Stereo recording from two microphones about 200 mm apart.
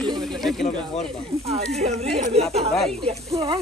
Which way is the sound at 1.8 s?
35° right (ahead or behind).